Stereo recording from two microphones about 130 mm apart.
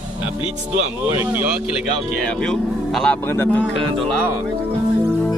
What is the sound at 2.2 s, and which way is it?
Speech, 5° left (ahead or behind).